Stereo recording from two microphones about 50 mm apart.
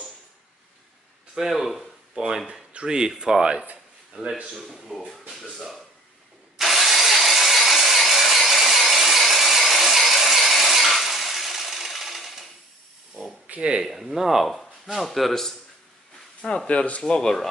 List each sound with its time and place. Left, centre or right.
1.3 s a sound: centre
2.4 s speech: centre
4.6 s speech: centre
6.6 s tools: centre
13.5 s speech: right
13.8 s speech: centre
16.3 s speech: left
17.0 s speech: centre